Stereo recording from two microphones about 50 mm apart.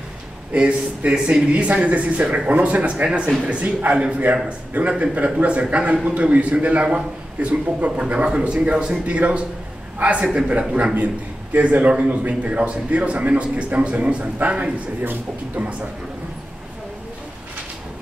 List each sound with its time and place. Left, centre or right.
0.5 s speech: right
11.5 s speech: right